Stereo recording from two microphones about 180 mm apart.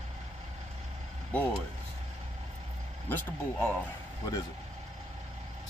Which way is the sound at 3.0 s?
10° left (ahead or behind).